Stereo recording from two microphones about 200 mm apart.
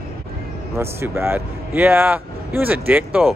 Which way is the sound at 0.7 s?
10° right (ahead or behind).